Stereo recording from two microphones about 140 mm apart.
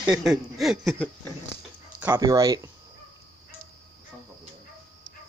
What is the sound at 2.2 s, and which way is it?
Speech, 25° right (ahead or behind).